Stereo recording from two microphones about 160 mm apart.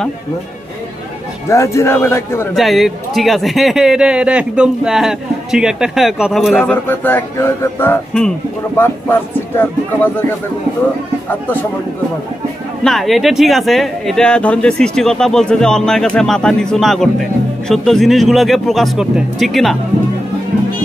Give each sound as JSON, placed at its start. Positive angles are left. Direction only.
{"t": 1.5, "sound": "speech", "side_deg": 15}
{"t": 2.5, "sound": "speech", "side_deg": 0}
{"t": 6.5, "sound": "speech", "side_deg": 10}
{"t": 12.8, "sound": "speech", "side_deg": 0}